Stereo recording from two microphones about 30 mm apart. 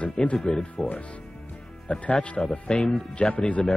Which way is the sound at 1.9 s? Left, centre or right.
Left.